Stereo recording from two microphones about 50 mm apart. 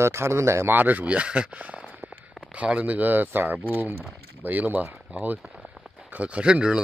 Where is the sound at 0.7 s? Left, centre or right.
Right.